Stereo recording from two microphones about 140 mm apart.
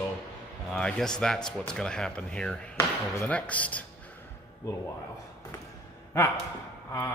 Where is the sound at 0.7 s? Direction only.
5° left (ahead or behind).